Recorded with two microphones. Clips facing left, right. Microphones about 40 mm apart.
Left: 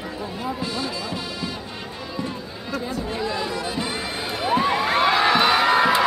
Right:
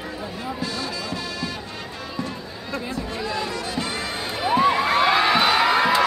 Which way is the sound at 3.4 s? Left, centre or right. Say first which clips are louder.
Left 1 dB; centre.